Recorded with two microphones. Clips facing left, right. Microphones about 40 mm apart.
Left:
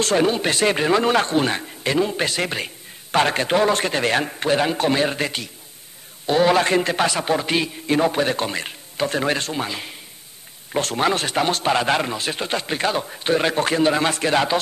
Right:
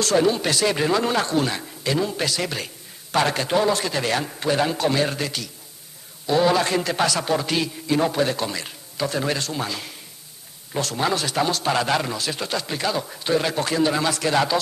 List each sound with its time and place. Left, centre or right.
0.0 s a man's voice: left
10.7 s a man's voice: left